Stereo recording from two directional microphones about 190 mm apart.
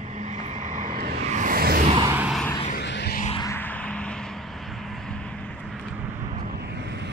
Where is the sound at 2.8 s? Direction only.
65° left (ahead or behind).